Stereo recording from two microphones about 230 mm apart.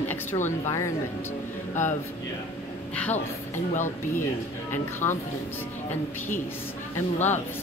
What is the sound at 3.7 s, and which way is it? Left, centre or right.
Speech, left.